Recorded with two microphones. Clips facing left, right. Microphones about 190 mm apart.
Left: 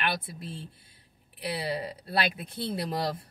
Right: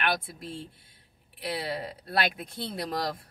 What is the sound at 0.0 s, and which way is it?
Speech, centre (ahead or behind).